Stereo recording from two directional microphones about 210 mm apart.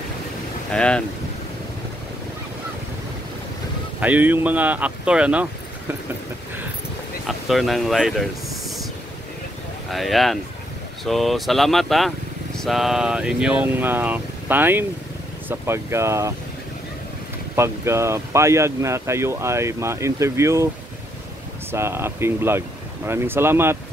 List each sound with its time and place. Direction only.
0.7 s speech: 5° left (ahead or behind)
4.0 s speech: 10° right (ahead or behind)
7.2 s speech: centre (ahead or behind)
9.8 s speech: centre (ahead or behind)
17.6 s speech: 15° right (ahead or behind)
21.7 s speech: 10° right (ahead or behind)